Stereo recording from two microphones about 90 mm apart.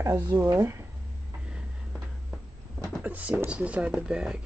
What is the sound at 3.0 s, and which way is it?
Speech, 20° right (ahead or behind).